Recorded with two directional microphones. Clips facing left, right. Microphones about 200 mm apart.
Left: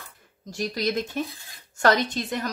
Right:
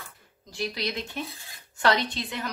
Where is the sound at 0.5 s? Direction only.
45° left (ahead or behind).